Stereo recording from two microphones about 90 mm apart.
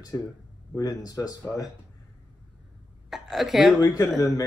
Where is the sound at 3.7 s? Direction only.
35° left (ahead or behind).